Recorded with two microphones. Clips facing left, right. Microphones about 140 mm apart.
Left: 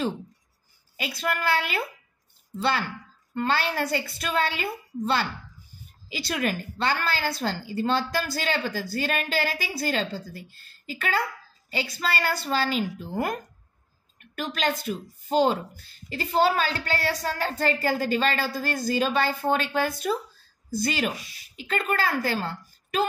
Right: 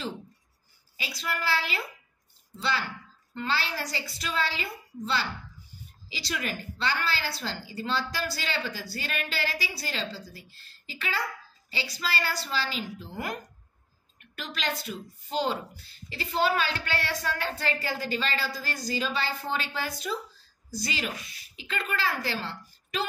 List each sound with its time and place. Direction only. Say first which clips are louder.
0.9 s a woman's voice: left 5 dB; 50° left (ahead or behind)